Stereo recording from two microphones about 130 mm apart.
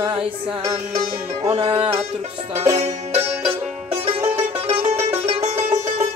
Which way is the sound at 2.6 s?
55° right (ahead or behind).